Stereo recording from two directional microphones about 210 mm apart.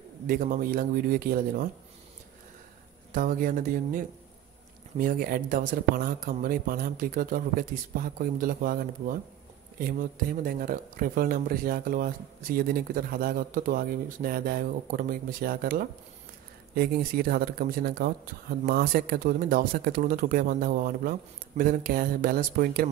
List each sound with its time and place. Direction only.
0.3 s speech: 40° right (ahead or behind)
3.2 s speech: 40° right (ahead or behind)